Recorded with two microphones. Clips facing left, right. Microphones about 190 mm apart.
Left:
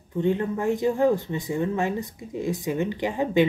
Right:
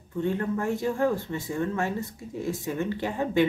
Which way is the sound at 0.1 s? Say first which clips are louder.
Left 3 dB; 20° left (ahead or behind).